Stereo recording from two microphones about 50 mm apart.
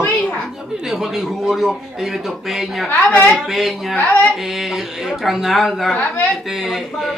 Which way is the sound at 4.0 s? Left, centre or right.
Left.